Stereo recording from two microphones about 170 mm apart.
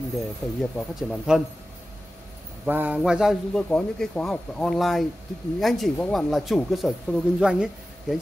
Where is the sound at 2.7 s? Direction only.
10° right (ahead or behind).